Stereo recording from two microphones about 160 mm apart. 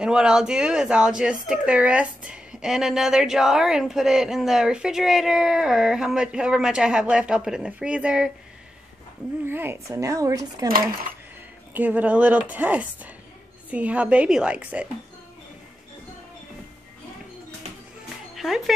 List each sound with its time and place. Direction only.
0.0 s speech: 5° right (ahead or behind)
9.5 s a child's voice: 15° right (ahead or behind)
11.7 s a woman's voice: 10° right (ahead or behind)
18.3 s music: centre (ahead or behind)